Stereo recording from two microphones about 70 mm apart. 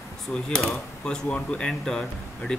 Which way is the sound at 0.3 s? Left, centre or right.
Centre.